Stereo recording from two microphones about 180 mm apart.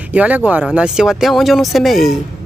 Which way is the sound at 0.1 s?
10° right (ahead or behind).